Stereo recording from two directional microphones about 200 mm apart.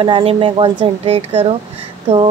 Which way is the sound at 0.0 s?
30° right (ahead or behind).